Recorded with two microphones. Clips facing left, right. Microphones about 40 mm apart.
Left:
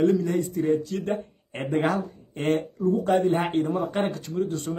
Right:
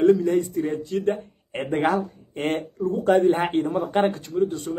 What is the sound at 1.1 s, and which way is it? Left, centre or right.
Speech, centre.